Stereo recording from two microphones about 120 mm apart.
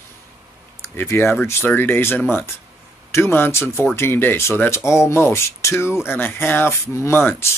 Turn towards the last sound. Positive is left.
turn(degrees=20)  # may be behind; listen again after turning